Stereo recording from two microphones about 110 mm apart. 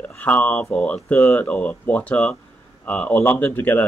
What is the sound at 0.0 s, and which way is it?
Speech, 15° left (ahead or behind).